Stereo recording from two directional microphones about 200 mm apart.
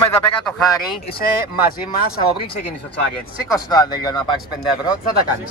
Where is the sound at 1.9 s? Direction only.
50° left (ahead or behind).